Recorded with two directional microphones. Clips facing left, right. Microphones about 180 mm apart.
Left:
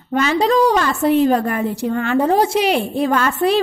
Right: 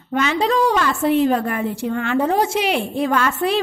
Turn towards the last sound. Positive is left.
turn(degrees=35)  # may be behind; listen again after turning